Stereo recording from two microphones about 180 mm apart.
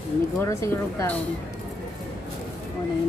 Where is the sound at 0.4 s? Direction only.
15° left (ahead or behind).